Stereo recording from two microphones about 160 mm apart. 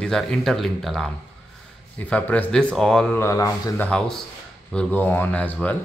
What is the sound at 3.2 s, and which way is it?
Speech, 20° left (ahead or behind).